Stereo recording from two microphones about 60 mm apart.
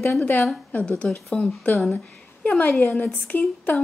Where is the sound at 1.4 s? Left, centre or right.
Left.